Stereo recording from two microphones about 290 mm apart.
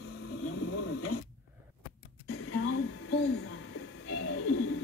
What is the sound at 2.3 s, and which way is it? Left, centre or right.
Music, left.